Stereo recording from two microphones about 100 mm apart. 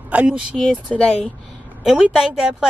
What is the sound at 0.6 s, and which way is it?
Speech, 10° left (ahead or behind).